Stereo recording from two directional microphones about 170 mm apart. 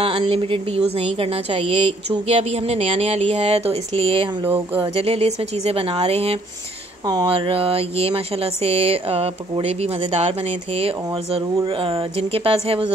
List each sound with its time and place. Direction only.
0.0 s a woman's voice: 30° right (ahead or behind)